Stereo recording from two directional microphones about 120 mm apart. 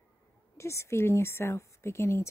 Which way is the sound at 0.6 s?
25° left (ahead or behind).